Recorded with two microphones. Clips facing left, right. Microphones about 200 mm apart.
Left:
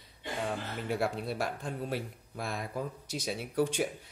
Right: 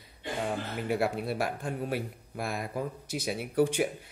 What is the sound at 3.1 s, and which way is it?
Speech, 55° right (ahead or behind).